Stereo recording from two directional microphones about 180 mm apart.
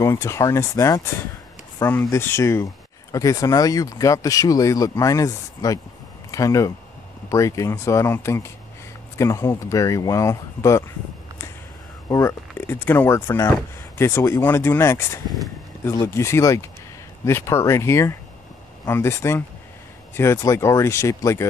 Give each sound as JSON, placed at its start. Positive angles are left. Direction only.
{"t": 0.0, "sound": "speech", "side_deg": 15}
{"t": 12.1, "sound": "speech", "side_deg": 15}